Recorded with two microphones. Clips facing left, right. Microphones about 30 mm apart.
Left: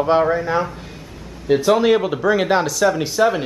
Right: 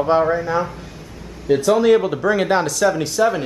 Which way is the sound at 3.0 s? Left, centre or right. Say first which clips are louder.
Left 1 dB; centre.